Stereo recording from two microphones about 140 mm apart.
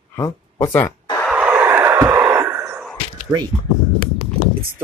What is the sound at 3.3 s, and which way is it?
Speech, 15° right (ahead or behind).